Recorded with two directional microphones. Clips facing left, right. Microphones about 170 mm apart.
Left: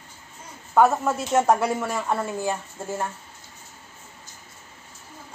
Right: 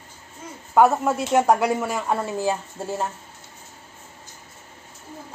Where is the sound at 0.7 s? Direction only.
10° right (ahead or behind).